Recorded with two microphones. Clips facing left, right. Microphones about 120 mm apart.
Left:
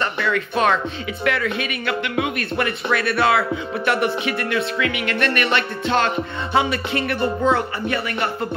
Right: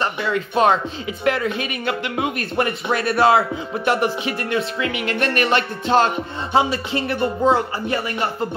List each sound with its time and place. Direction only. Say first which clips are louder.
0.0 s speech: even; 30° right (ahead or behind)